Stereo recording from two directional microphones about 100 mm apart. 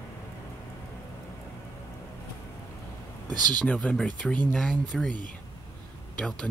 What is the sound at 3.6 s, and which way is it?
Speech, 10° left (ahead or behind).